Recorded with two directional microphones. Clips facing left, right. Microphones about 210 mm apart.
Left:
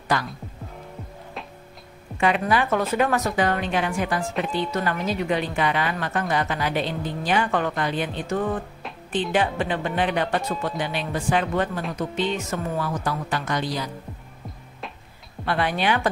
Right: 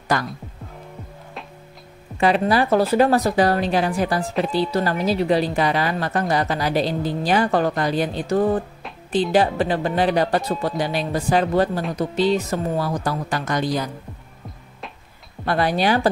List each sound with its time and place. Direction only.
0.1 s speech: 45° right (ahead or behind)
2.1 s a woman's voice: 35° right (ahead or behind)
15.4 s a woman's voice: 40° right (ahead or behind)